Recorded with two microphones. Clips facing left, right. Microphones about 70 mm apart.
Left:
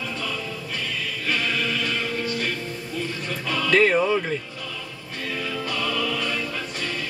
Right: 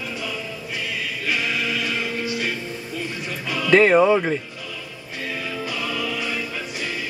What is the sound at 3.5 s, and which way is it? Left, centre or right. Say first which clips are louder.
Speech: right 4 dB; centre.